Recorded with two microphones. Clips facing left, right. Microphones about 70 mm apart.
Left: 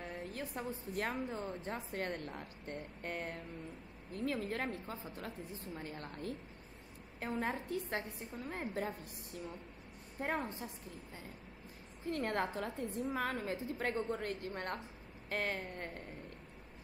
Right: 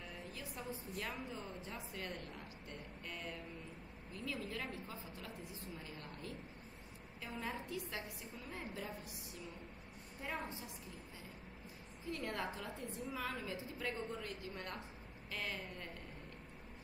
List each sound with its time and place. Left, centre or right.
0.0 s a woman's voice: left
12.0 s a woman's voice: left